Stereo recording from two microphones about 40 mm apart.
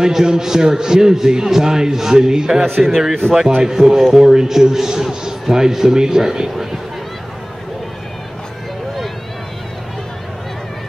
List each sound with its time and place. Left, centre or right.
0.0 s a man's voice: centre
2.6 s a man's voice: centre